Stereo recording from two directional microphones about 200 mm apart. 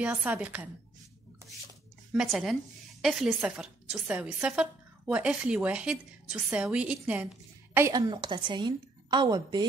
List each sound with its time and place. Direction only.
0.0 s a woman's voice: 5° right (ahead or behind)
2.1 s a woman's voice: centre (ahead or behind); by 9.7 s 20° right (ahead or behind)